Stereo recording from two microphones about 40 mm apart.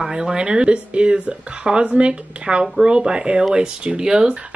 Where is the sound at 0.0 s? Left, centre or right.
Centre.